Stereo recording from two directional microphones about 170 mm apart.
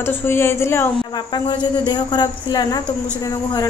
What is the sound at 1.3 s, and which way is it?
A woman's voice, 25° left (ahead or behind).